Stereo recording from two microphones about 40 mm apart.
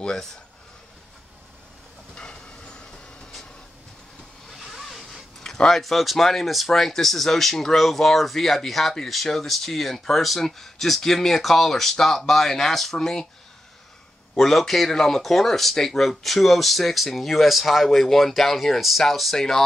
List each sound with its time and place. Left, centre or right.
0.0 s speech: centre
2.1 s train: left
4.5 s vehicle: centre
5.4 s speech: centre
14.3 s speech: centre
19.3 s speech: centre